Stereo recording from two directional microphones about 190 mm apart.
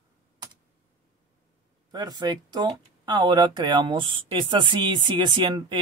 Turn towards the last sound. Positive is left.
turn(degrees=-25)  # may be behind; listen again after turning